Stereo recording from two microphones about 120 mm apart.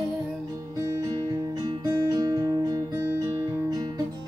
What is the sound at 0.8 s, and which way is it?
Music, 30° right (ahead or behind).